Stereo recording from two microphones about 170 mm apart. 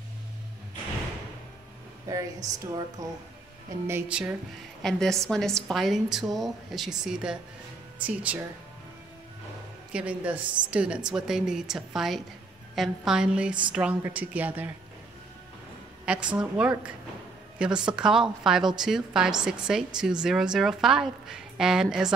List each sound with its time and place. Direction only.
2.0 s a woman's voice: 20° right (ahead or behind)
4.8 s a woman's voice: 5° left (ahead or behind)
9.9 s a woman's voice: 10° right (ahead or behind)
16.3 s a woman's voice: 5° right (ahead or behind)